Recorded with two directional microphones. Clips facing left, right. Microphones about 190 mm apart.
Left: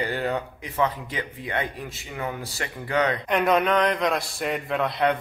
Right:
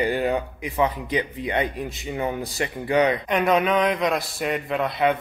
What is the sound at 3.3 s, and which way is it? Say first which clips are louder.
A man's voice: right 1 dB; centre (ahead or behind).